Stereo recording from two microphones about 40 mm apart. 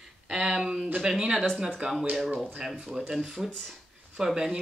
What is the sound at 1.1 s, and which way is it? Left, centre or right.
Speech, centre.